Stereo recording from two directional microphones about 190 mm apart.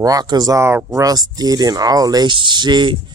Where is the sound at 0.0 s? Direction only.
20° right (ahead or behind).